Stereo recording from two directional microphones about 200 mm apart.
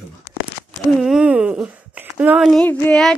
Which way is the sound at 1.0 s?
5° right (ahead or behind).